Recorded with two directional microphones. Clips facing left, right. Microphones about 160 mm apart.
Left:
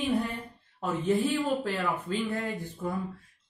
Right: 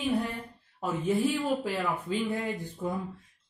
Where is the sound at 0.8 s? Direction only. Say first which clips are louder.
Left 1 dB; 10° right (ahead or behind).